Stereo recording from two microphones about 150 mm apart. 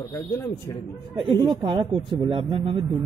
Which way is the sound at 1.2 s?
35° right (ahead or behind).